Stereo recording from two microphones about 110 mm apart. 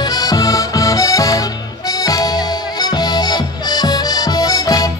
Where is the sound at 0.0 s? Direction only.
35° left (ahead or behind).